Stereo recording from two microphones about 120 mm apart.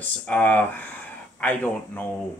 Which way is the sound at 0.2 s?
10° left (ahead or behind).